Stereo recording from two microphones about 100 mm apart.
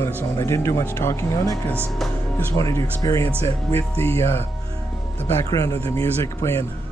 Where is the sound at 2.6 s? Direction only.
30° left (ahead or behind).